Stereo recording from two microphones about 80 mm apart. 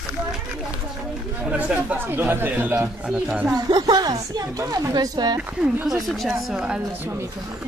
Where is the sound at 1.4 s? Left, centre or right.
Centre.